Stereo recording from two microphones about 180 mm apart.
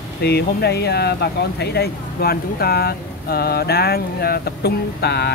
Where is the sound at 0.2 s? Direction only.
65° left (ahead or behind).